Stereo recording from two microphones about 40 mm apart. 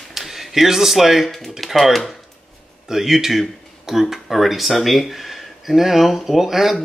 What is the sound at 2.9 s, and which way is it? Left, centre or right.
Speech, centre.